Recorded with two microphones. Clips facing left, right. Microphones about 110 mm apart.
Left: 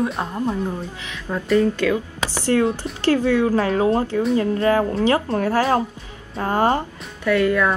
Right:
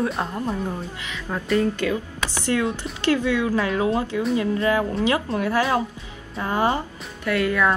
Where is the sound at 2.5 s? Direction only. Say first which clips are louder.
Left 5 dB; 35° left (ahead or behind).